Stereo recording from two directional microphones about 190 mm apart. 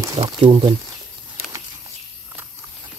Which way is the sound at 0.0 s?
20° right (ahead or behind).